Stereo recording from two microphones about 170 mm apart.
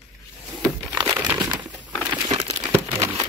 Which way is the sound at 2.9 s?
15° right (ahead or behind).